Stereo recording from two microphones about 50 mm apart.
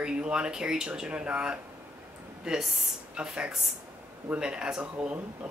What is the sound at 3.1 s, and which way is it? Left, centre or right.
Speech, centre.